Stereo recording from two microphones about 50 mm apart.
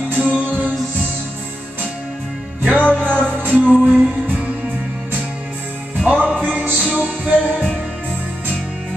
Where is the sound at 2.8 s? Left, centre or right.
Left.